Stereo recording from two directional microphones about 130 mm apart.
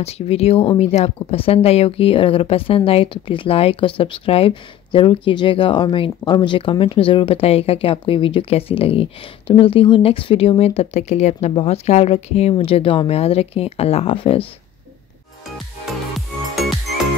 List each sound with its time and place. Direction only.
0.0 s speech: 50° left (ahead or behind)
15.5 s music: centre (ahead or behind)